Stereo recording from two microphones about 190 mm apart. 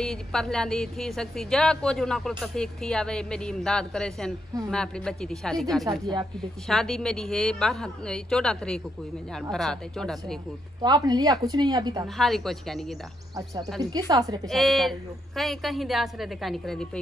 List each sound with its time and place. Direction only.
0.0 s speech: centre (ahead or behind)
10.8 s speech: 20° right (ahead or behind)
12.2 s speech: centre (ahead or behind)
13.7 s speech: 20° right (ahead or behind)
14.5 s speech: centre (ahead or behind)